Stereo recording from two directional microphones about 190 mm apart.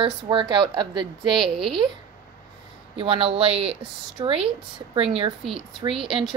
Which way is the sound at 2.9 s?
30° right (ahead or behind).